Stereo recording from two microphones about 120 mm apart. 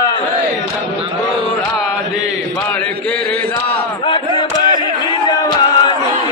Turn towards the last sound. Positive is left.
turn(degrees=35)  # may be behind; listen again after turning